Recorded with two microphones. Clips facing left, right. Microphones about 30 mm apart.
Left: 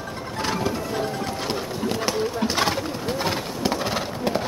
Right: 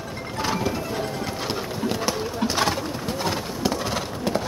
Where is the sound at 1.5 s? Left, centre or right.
Centre.